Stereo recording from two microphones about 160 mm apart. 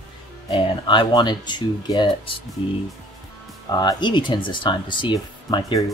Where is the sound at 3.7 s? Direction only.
25° left (ahead or behind).